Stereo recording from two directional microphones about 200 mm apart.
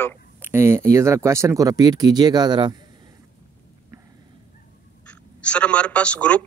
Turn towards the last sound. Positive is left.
turn(degrees=5)  # may be behind; listen again after turning